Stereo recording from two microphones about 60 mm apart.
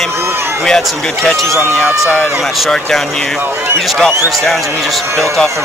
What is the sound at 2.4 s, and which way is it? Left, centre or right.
Speech, centre.